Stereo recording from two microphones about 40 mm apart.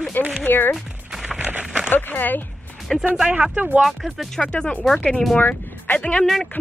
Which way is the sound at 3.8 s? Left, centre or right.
Centre.